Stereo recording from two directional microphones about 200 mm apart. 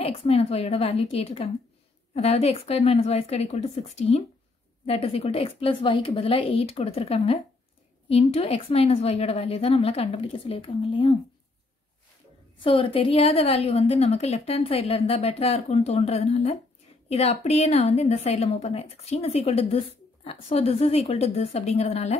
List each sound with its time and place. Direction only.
0.0 s a woman's voice: 30° left (ahead or behind)
12.6 s a woman's voice: 25° left (ahead or behind)